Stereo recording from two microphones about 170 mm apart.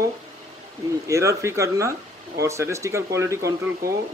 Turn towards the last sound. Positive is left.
turn(degrees=-20)  # may be behind; listen again after turning